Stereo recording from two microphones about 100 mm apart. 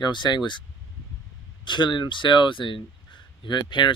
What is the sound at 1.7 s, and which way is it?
Speech, 50° left (ahead or behind).